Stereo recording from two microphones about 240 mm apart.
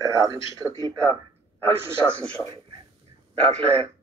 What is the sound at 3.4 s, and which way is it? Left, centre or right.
Speech, right.